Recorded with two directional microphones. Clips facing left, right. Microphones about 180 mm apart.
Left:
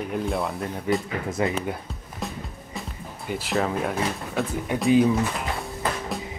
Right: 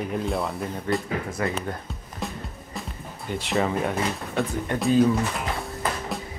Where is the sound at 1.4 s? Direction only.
20° left (ahead or behind).